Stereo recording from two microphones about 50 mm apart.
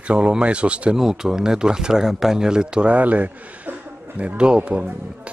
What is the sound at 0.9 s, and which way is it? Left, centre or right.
Speech, centre.